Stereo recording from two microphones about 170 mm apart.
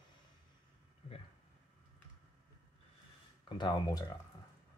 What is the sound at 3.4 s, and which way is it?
Speech, 25° left (ahead or behind).